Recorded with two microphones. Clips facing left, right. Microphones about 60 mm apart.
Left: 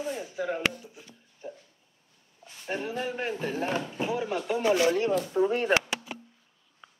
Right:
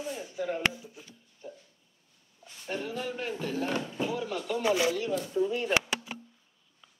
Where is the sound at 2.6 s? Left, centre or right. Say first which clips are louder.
Left 2 dB; left.